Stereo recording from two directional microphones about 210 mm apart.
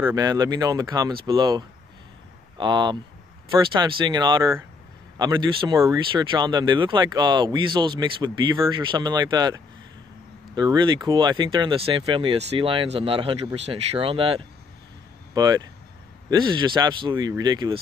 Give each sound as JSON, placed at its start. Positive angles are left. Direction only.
{"t": 0.0, "sound": "speech", "side_deg": -20}